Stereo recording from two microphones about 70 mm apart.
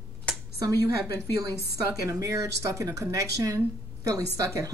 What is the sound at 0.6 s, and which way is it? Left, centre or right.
Speech, right.